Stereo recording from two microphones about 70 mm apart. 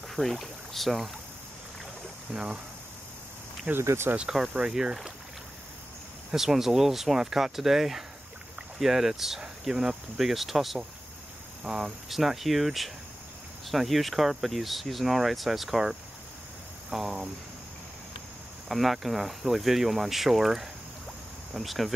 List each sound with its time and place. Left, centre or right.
0.1 s speech: centre
2.3 s speech: centre
3.7 s speech: right
4.2 s speech: centre
6.3 s speech: centre
18.7 s speech: centre